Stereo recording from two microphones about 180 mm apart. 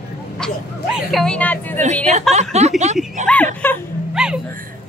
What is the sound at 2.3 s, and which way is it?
Speech, 40° right (ahead or behind).